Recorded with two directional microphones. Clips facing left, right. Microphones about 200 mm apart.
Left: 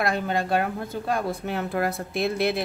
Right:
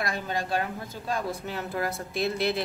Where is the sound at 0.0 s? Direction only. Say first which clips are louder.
Left 6 dB; 60° left (ahead or behind).